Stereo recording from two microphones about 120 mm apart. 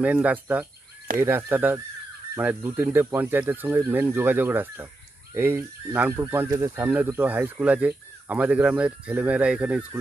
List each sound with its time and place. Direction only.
0.0 s speech: 10° right (ahead or behind)